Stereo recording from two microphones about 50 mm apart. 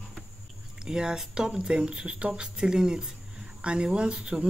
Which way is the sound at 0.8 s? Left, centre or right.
Centre.